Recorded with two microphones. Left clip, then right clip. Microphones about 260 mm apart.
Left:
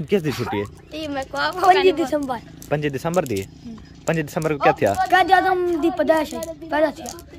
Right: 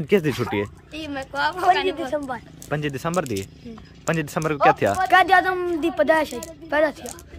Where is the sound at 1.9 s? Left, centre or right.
Left.